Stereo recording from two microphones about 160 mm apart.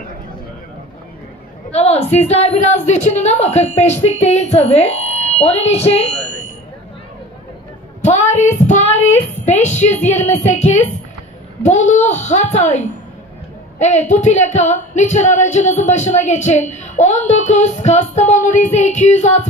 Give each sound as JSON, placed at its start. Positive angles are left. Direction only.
{"t": 1.7, "sound": "speech", "side_deg": 40}
{"t": 8.0, "sound": "child singing", "side_deg": 45}
{"t": 9.4, "sound": "a child's voice", "side_deg": 45}